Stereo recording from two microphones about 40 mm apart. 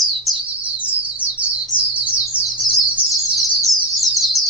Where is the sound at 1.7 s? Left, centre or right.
Right.